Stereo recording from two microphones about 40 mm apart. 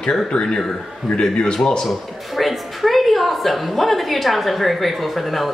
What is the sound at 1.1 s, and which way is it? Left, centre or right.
Speech, left.